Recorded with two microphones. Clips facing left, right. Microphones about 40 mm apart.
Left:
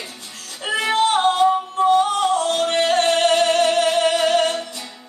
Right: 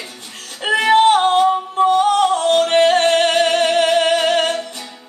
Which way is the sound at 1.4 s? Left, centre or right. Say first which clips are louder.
Right 2 dB; right.